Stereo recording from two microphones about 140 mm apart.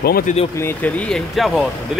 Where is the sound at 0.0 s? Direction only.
85° left.